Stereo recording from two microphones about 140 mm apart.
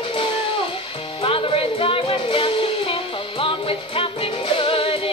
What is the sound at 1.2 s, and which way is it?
Music, 40° left (ahead or behind).